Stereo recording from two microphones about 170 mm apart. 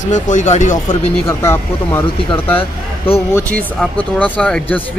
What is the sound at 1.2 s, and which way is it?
Speech, 15° left (ahead or behind).